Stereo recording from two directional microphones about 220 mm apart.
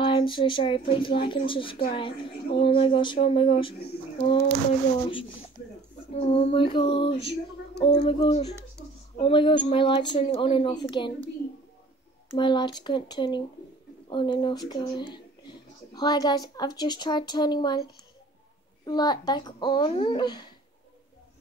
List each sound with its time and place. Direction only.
0.0 s speech: 20° left (ahead or behind)
6.1 s speech: 25° left (ahead or behind)
12.3 s speech: 20° left (ahead or behind)
18.9 s speech: 20° left (ahead or behind)